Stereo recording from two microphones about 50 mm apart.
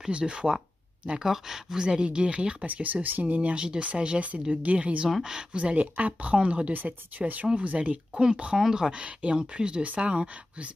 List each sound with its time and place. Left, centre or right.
0.1 s speech: right
2.6 s speech: right
5.2 s speech: centre
5.6 s speech: right
6.7 s speech: right
8.5 s speech: centre; by 10.7 s right